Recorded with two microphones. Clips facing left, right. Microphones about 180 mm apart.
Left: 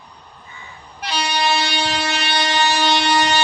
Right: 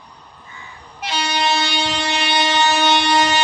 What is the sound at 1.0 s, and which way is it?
Train, 25° right (ahead or behind).